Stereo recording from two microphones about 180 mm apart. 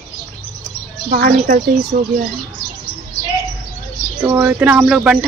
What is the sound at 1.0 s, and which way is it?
Speech, 50° right (ahead or behind).